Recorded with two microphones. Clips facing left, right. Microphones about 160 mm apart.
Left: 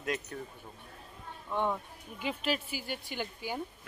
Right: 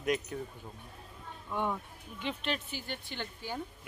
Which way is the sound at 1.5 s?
10° left (ahead or behind).